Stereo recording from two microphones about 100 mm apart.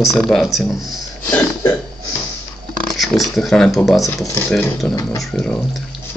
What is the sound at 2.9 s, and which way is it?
Speech, centre (ahead or behind).